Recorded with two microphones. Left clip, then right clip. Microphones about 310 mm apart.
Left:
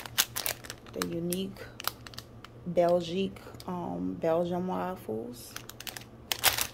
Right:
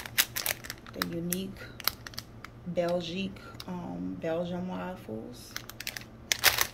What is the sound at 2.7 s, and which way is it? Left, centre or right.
Speech, centre.